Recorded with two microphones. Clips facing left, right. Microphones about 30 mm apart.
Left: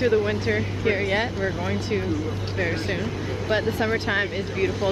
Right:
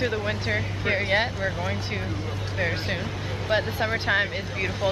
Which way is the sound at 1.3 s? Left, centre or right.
Centre.